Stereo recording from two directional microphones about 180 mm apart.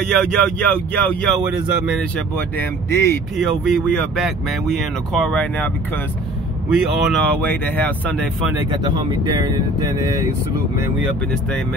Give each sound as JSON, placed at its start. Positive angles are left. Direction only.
{"t": 0.0, "sound": "speech", "side_deg": 5}
{"t": 1.4, "sound": "speech", "side_deg": -5}
{"t": 2.5, "sound": "speech", "side_deg": 15}
{"t": 3.3, "sound": "speech", "side_deg": 0}
{"t": 6.7, "sound": "speech", "side_deg": -5}
{"t": 7.4, "sound": "speech", "side_deg": 10}
{"t": 8.8, "sound": "speech", "side_deg": -25}